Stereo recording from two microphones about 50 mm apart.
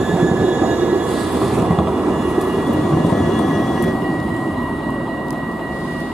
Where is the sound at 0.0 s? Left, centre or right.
Centre.